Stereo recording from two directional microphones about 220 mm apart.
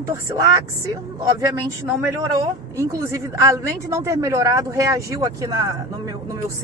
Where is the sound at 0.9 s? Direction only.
15° right (ahead or behind).